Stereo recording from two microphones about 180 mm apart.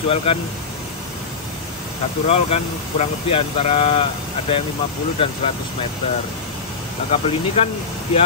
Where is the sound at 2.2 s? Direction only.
35° left (ahead or behind).